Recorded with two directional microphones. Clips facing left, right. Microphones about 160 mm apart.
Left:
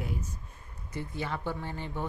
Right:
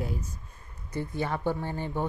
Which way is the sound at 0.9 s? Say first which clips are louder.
Right 4 dB; 45° right (ahead or behind).